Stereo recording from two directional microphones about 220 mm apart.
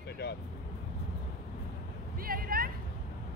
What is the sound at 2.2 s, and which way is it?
Vehicle, 40° right (ahead or behind).